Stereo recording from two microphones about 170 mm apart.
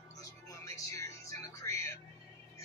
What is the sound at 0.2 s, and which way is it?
Music, 20° left (ahead or behind).